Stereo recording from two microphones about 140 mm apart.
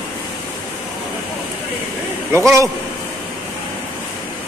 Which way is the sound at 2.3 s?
20° right (ahead or behind).